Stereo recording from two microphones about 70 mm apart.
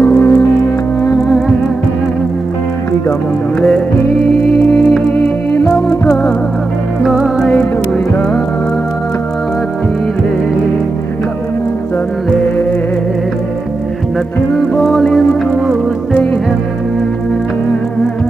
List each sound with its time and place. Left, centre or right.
0.0 s music: centre
3.6 s music: centre
7.0 s music: centre
14.8 s music: centre
15.0 s music: centre